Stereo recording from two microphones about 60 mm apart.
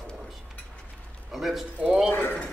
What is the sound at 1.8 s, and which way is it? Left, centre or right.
Speech, centre.